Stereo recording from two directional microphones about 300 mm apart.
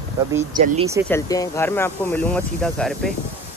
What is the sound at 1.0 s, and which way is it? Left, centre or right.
Speech, centre.